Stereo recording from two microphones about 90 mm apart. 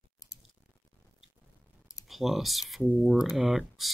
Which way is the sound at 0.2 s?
40° left (ahead or behind).